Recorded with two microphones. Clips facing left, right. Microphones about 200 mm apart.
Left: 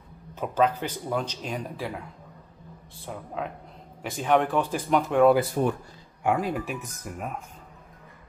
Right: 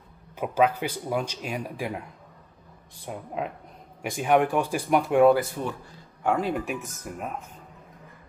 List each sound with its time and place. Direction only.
0.3 s speech: 10° right (ahead or behind)
3.1 s speech: 15° right (ahead or behind)
5.6 s speech: 45° left (ahead or behind)
6.2 s speech: centre (ahead or behind)